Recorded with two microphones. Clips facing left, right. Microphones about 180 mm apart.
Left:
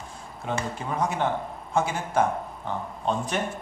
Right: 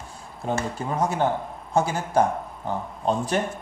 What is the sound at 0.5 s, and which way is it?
Speech, 35° right (ahead or behind).